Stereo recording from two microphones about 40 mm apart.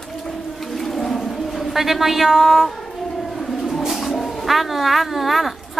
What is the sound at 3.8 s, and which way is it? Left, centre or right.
Bird, centre.